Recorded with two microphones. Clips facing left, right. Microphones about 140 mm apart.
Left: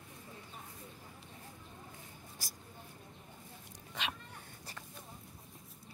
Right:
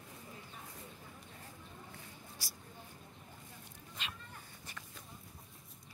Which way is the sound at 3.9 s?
90° left.